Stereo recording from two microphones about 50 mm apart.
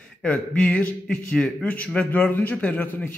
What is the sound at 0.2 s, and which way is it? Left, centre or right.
A man's voice, left.